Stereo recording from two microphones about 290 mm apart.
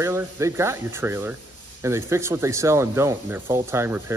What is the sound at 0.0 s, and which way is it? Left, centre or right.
Speech, centre.